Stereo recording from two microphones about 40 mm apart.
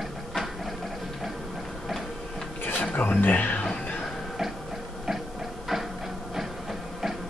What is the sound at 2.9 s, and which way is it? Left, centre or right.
Speech, left.